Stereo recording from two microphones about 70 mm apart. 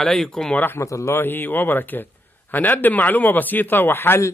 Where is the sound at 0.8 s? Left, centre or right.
Left.